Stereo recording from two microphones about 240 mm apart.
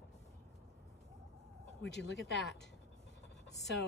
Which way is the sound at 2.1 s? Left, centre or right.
Left.